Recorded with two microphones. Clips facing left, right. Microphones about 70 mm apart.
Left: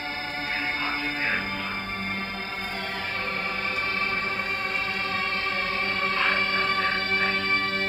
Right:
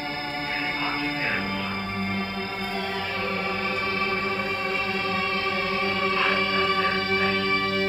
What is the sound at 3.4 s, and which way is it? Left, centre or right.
Music, left.